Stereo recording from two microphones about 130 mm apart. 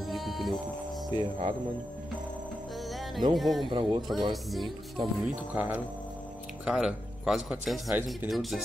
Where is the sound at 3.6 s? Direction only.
40° right (ahead or behind).